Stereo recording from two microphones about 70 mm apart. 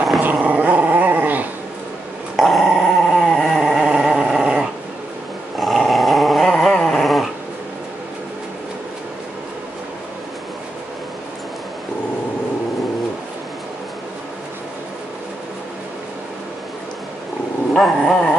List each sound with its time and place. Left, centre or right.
0.2 s dog: right
2.3 s dog: centre
17.7 s dog: centre